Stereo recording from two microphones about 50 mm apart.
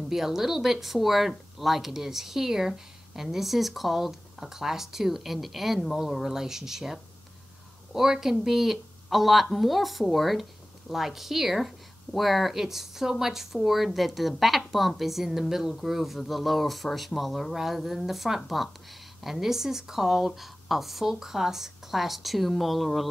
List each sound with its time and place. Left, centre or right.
0.1 s speech: centre